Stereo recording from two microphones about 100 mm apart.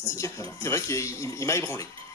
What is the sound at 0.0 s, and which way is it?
Speech, 30° left (ahead or behind).